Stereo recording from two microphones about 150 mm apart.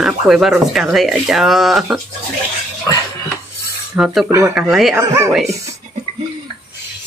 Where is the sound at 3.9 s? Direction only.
5° right (ahead or behind).